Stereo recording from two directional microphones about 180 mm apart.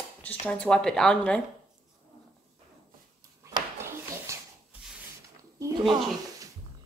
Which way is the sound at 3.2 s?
15° right (ahead or behind).